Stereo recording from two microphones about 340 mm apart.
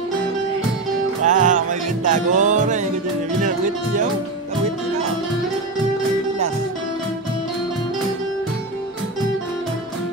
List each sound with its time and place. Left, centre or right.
1.2 s music: right
3.4 s speech: right